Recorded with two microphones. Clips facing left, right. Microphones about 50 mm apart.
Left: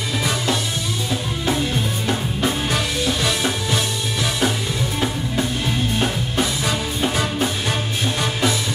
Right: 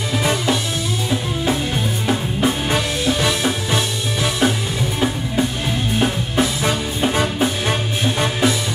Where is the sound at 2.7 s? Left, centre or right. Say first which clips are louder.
Right 2 dB; centre.